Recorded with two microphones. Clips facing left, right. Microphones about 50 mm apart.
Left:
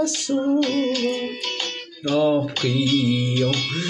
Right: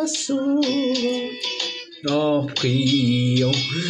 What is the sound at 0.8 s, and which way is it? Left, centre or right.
Music, centre.